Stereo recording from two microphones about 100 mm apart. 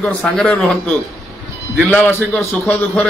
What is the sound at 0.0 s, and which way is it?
A man's voice, 10° left (ahead or behind).